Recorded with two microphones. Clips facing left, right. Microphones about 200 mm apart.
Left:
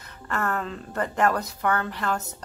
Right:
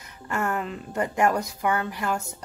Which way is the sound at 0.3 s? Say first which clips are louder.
Right 1 dB; 15° right (ahead or behind).